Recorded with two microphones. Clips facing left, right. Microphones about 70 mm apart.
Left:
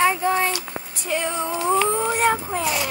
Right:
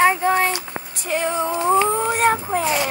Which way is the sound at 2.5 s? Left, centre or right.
Right.